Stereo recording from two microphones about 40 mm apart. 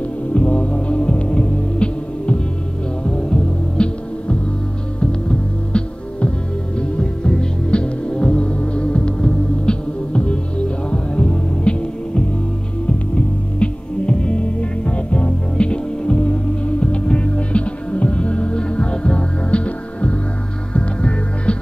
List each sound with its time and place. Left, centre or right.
0.3 s music: left
14.0 s music: left